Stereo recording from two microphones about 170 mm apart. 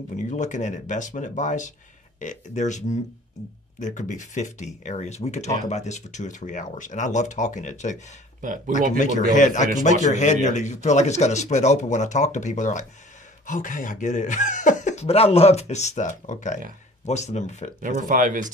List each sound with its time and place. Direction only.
0.3 s speech: 45° left (ahead or behind)
8.4 s speech: 50° right (ahead or behind)
8.9 s speech: 45° left (ahead or behind)
17.8 s speech: 50° right (ahead or behind)